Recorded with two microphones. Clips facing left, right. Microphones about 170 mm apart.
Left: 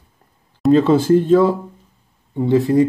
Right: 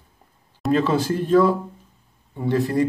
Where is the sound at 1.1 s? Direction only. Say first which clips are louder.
Left 5 dB; 25° left (ahead or behind).